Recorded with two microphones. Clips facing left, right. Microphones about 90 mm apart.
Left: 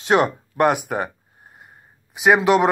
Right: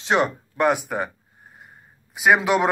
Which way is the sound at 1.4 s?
5° left (ahead or behind).